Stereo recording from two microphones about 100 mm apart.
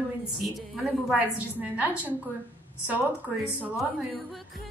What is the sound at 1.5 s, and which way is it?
Speech, 15° right (ahead or behind).